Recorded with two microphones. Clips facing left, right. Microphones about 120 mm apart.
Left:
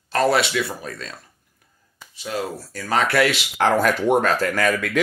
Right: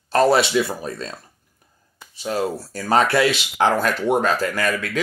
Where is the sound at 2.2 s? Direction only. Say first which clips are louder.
Right 4 dB; 35° right (ahead or behind).